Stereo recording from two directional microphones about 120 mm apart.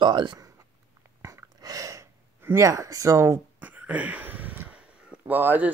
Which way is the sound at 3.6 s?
15° right (ahead or behind).